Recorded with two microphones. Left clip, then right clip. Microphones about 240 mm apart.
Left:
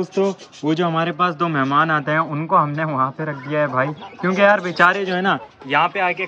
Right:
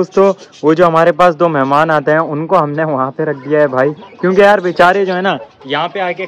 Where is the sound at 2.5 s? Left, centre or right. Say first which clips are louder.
Right 5 dB; right.